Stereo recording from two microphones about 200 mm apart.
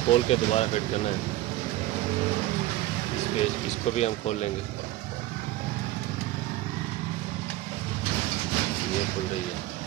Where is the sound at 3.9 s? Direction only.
35° left (ahead or behind).